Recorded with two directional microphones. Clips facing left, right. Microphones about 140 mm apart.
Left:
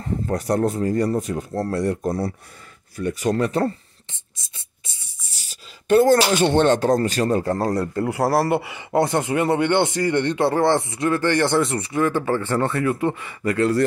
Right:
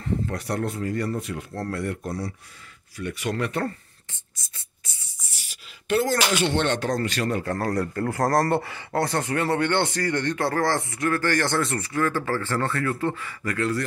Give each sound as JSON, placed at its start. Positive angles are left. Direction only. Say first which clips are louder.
{"t": 0.0, "sound": "speech", "louder": "left 3 dB", "side_deg": 40}
{"t": 4.1, "sound": "whispering", "louder": "left 2 dB", "side_deg": 20}
{"t": 5.9, "sound": "speech", "louder": "left 8 dB", "side_deg": 50}
{"t": 6.1, "sound": "speech", "louder": "left 6 dB", "side_deg": 35}
{"t": 6.4, "sound": "speech", "louder": "left 7 dB", "side_deg": 45}